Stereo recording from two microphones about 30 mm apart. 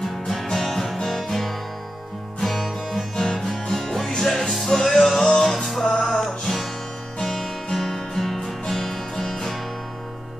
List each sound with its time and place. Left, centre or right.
0.6 s music: centre
5.2 s music: centre
5.5 s music: centre